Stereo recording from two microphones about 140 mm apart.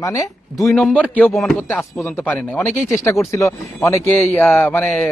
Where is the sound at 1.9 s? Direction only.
20° left (ahead or behind).